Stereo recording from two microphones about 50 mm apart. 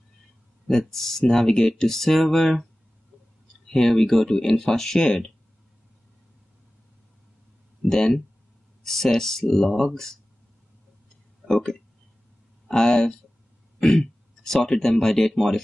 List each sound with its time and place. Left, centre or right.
0.7 s speech: centre
3.6 s speech: centre
7.9 s speech: centre
11.4 s speech: centre